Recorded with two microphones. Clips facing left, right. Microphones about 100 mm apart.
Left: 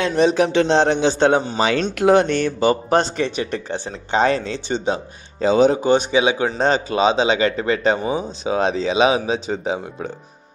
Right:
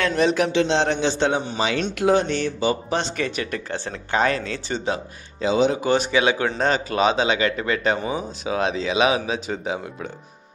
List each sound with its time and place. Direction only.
0.0 s a man's voice: 25° left (ahead or behind)
0.5 s a man's voice: 45° left (ahead or behind)
2.0 s speech: 60° left (ahead or behind)
3.2 s a man's voice: 25° left (ahead or behind)
5.4 s speech: 40° left (ahead or behind)
5.8 s a man's voice: 20° left (ahead or behind)